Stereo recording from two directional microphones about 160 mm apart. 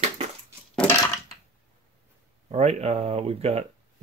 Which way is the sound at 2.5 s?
40° right (ahead or behind).